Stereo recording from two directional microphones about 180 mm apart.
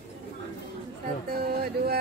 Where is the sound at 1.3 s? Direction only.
55° right (ahead or behind).